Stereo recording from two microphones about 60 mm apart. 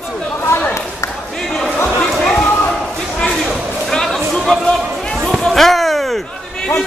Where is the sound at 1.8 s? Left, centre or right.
Centre.